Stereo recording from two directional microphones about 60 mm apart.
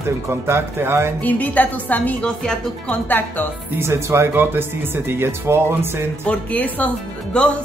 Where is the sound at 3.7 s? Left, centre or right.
Right.